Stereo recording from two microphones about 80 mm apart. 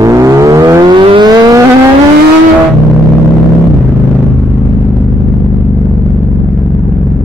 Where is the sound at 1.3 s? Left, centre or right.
Right.